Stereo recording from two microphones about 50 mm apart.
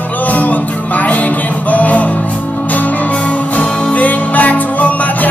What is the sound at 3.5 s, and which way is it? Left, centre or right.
Music, left.